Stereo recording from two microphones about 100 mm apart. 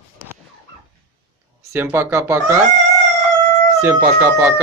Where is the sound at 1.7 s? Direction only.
25° right (ahead or behind).